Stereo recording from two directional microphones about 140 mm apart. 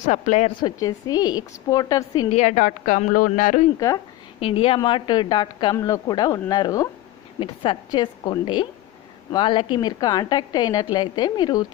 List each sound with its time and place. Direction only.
0.0 s a woman's voice: 60° left (ahead or behind)
0.5 s a woman's voice: 30° left (ahead or behind)
2.2 s a woman's voice: 60° left (ahead or behind)
3.7 s a woman's voice: 25° left (ahead or behind)
4.4 s a woman's voice: 40° left (ahead or behind)